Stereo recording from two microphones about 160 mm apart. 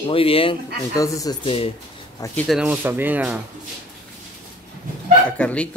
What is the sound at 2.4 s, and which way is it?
Speech, 5° right (ahead or behind).